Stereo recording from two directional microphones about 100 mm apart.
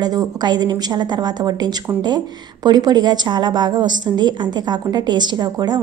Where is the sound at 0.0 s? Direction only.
40° right (ahead or behind).